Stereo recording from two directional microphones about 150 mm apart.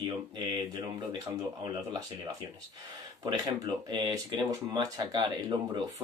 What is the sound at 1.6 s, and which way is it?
Speech, 25° right (ahead or behind).